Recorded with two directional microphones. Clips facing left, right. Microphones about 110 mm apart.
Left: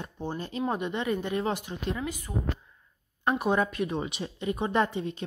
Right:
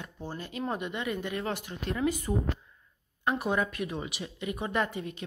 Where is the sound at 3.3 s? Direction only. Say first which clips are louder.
Left 4 dB; 25° left (ahead or behind).